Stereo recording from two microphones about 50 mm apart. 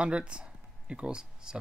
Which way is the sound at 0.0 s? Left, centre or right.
Right.